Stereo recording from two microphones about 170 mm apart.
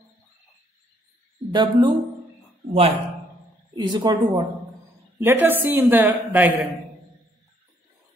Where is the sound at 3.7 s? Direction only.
25° right (ahead or behind).